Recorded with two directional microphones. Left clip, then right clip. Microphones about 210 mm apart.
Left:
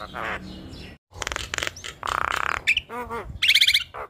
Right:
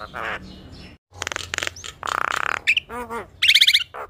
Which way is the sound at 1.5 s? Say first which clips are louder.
Right 2 dB; 15° right (ahead or behind).